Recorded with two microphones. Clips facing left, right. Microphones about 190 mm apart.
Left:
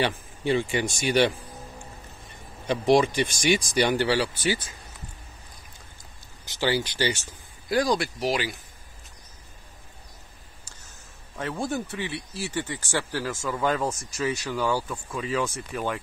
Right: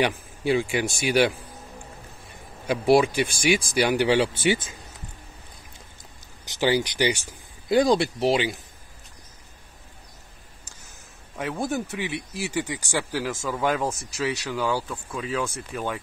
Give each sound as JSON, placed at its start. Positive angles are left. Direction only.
{"t": 0.0, "sound": "speech", "side_deg": -10}
{"t": 2.6, "sound": "speech", "side_deg": -10}
{"t": 6.4, "sound": "speech", "side_deg": -20}
{"t": 7.6, "sound": "speech", "side_deg": -25}
{"t": 11.3, "sound": "speech", "side_deg": -10}
{"t": 14.9, "sound": "speech", "side_deg": 0}